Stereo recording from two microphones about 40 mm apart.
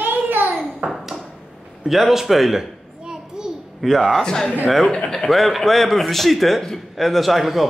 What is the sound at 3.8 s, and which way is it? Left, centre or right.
Speech, centre.